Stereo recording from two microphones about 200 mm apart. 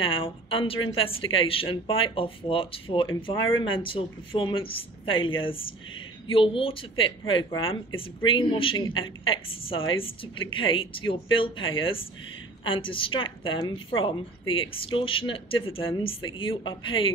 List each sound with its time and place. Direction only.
0.0 s speech: 25° left (ahead or behind)